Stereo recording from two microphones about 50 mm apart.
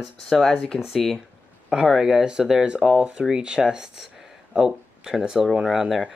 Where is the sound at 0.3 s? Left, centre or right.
Centre.